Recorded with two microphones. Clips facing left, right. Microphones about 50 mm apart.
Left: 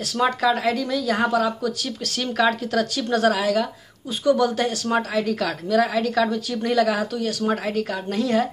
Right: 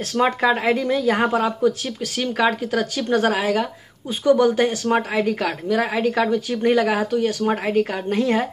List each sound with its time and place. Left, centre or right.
0.1 s a woman's voice: right
2.1 s a woman's voice: centre